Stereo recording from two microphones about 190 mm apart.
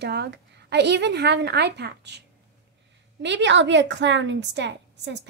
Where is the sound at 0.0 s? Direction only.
60° right (ahead or behind).